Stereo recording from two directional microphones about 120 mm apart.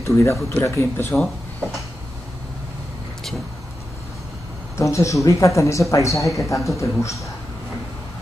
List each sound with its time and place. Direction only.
0.0 s speech: 25° left (ahead or behind)
4.7 s speech: 25° left (ahead or behind)